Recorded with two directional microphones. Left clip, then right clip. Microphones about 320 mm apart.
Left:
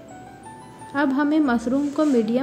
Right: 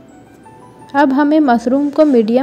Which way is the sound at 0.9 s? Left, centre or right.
Centre.